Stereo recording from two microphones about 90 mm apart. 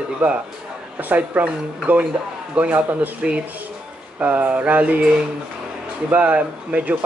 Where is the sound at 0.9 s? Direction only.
20° right (ahead or behind).